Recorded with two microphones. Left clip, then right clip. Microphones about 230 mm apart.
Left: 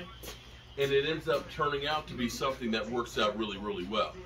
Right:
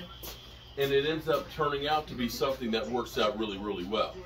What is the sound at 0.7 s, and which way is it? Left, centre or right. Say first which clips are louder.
A man's voice: right 1 dB; centre.